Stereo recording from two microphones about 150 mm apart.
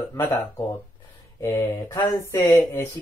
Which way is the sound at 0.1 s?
20° left (ahead or behind).